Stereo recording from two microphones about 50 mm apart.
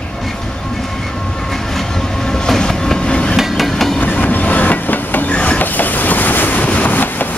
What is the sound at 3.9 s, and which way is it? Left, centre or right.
Train, left.